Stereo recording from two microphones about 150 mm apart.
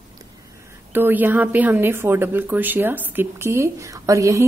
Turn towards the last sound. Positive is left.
turn(degrees=-20)  # may be behind; listen again after turning